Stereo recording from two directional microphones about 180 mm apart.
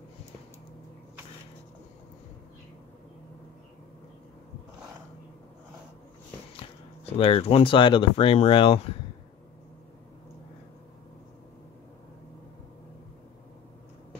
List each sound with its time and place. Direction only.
7.2 s speech: 30° left (ahead or behind)